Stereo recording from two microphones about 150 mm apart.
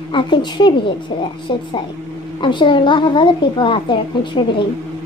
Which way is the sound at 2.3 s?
35° left (ahead or behind).